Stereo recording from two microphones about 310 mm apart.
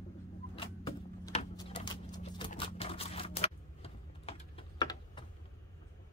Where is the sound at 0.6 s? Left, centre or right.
Centre.